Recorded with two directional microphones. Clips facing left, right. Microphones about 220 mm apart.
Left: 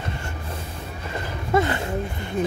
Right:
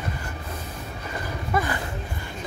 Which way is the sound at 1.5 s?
25° left (ahead or behind).